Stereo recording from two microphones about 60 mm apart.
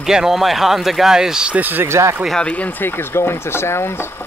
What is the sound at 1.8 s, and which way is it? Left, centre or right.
Speech, right.